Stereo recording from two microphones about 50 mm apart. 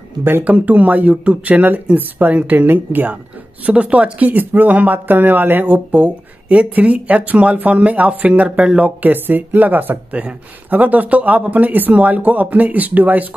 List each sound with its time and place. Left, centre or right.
0.2 s speech: right
0.5 s speech: right